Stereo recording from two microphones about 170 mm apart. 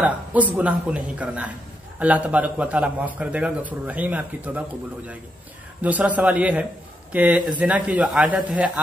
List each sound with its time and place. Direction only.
0.0 s a man's voice: 10° right (ahead or behind)